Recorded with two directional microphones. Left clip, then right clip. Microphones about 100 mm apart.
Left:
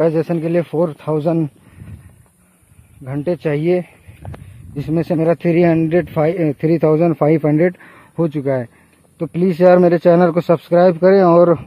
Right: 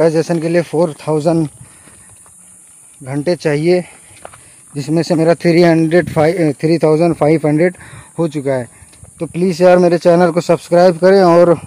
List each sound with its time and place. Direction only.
0.0 s speech: 60° right (ahead or behind)
3.0 s speech: 70° right (ahead or behind); by 8.3 s 40° right (ahead or behind)
8.3 s speech: 30° right (ahead or behind); by 11.6 s 50° right (ahead or behind)